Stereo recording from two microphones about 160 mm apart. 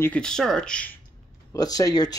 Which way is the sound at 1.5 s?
25° left (ahead or behind).